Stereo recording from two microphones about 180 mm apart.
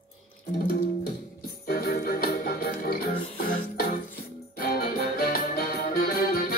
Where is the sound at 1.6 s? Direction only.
60° left (ahead or behind).